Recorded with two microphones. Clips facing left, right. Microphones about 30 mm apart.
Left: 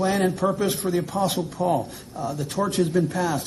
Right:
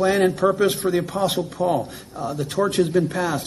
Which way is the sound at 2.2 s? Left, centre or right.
Right.